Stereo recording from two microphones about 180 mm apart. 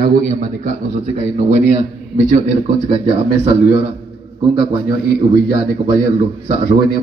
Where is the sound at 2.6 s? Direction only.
25° right (ahead or behind).